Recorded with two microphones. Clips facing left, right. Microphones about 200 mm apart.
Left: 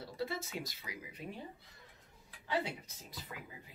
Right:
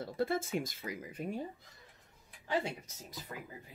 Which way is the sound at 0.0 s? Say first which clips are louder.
Right 6 dB; 50° right (ahead or behind).